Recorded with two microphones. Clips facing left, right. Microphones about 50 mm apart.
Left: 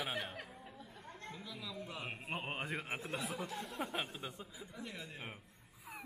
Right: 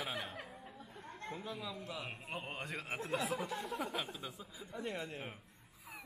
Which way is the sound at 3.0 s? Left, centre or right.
Centre.